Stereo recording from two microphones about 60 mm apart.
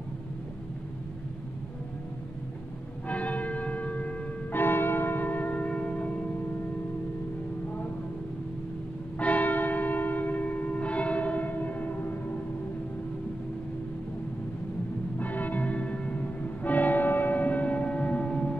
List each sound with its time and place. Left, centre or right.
3.1 s church bell: left
4.6 s church bell: left
9.2 s church bell: left
15.1 s music: left